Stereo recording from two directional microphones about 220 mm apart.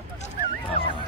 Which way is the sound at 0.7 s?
25° left (ahead or behind).